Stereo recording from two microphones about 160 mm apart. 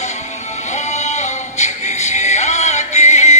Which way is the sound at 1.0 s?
45° left (ahead or behind).